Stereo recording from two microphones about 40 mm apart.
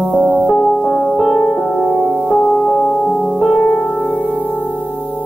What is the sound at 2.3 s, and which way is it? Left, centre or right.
Music, centre.